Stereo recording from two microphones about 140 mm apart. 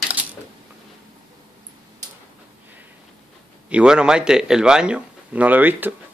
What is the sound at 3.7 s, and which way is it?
Speech, 5° right (ahead or behind).